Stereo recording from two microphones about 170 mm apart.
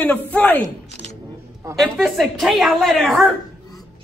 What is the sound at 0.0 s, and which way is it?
Speech, 5° left (ahead or behind).